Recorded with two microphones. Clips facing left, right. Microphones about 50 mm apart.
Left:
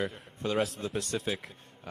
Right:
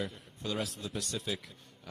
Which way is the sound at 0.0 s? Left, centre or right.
Left.